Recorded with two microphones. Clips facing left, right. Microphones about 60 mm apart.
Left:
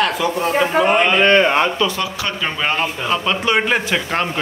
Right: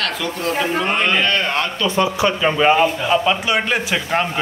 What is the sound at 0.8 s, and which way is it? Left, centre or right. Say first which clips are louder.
Speech: left 6 dB; centre.